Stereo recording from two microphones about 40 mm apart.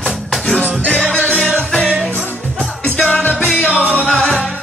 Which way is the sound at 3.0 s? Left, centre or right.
Left.